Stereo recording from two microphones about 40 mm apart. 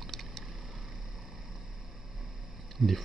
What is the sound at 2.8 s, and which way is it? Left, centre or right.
Speech, centre.